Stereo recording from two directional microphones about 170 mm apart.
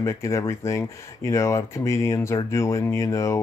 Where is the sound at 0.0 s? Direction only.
20° left (ahead or behind).